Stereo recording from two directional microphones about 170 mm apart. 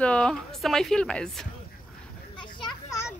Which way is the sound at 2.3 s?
30° left (ahead or behind).